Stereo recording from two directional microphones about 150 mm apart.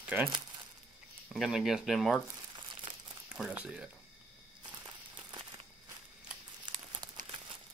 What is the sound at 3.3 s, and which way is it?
Speech, 5° right (ahead or behind).